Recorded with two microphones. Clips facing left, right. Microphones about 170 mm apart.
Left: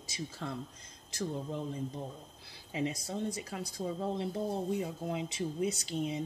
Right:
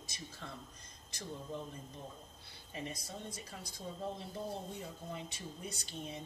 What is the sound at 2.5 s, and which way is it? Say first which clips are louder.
Speech: left 9 dB; 90° left.